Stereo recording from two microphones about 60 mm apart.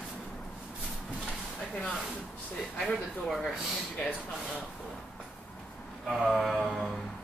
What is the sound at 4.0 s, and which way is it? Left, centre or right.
Speech, centre.